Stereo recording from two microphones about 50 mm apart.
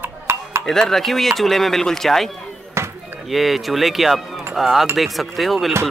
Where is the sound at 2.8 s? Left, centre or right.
Right.